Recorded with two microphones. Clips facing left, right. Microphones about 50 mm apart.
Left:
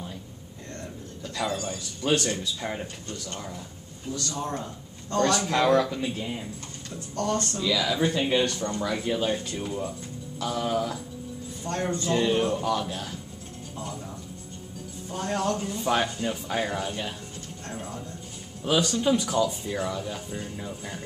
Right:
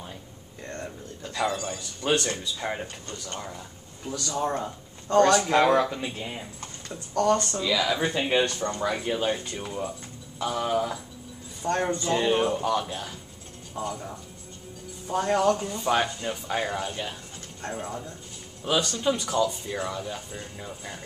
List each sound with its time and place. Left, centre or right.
1.2 s speech: centre
7.6 s speech: centre
15.2 s speech: centre
18.6 s speech: centre